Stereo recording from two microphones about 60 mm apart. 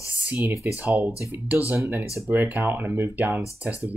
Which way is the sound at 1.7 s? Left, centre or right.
Right.